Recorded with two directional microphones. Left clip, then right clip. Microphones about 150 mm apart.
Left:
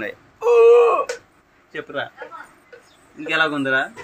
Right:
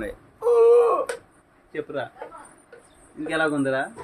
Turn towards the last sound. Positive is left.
turn(degrees=0)  # may be behind; listen again after turning